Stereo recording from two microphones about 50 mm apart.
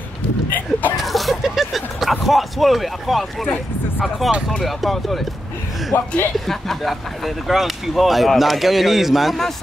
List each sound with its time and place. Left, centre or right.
0.5 s speech: left
0.9 s a sound: centre
4.2 s speech: centre
5.9 s a man's voice: left
6.4 s speech: centre